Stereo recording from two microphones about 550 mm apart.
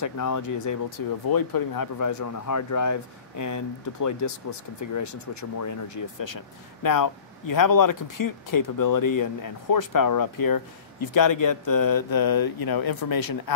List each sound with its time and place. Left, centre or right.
0.0 s speech: left